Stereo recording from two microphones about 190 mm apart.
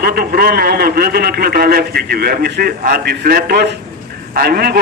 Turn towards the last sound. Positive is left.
turn(degrees=-55)  # may be behind; listen again after turning